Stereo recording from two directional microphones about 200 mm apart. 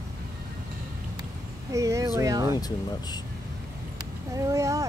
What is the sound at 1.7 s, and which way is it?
Speech, 15° right (ahead or behind).